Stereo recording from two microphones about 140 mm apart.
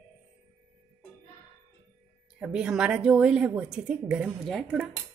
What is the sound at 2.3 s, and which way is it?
A woman's voice, 10° right (ahead or behind).